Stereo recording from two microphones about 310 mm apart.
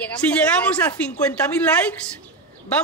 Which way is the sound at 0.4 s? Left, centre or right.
Centre.